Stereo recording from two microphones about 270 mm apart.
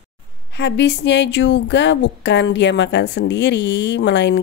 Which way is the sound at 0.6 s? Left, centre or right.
Left.